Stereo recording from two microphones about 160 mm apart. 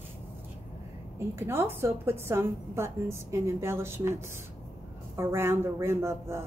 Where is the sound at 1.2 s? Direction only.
15° right (ahead or behind).